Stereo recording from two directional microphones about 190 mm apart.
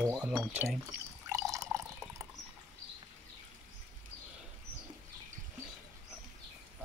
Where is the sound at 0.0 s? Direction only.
5° right (ahead or behind).